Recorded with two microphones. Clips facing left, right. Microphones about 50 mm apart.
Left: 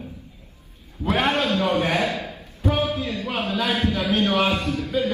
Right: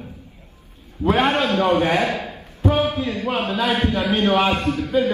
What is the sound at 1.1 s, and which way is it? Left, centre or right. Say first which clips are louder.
A man's voice: right 2 dB; right.